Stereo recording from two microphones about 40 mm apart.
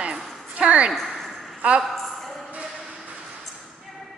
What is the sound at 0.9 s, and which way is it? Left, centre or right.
Speech, centre.